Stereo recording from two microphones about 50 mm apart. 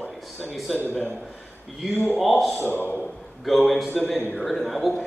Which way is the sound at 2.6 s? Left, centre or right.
Left.